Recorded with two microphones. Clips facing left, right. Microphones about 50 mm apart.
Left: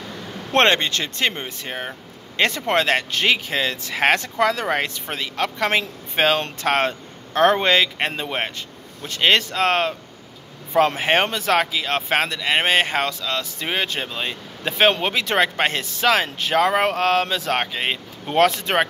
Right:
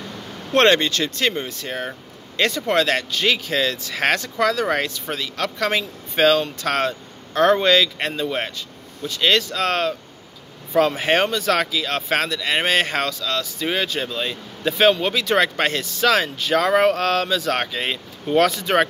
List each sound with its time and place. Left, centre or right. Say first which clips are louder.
0.6 s speech: right 2 dB; left
11.0 s speech: even; left
18.2 s speech: even; left